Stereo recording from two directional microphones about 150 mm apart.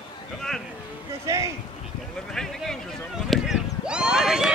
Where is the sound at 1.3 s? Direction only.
20° right (ahead or behind).